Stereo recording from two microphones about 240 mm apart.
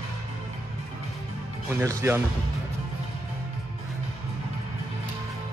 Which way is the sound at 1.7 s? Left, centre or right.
Centre.